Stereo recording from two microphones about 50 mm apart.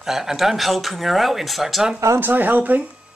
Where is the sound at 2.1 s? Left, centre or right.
Right.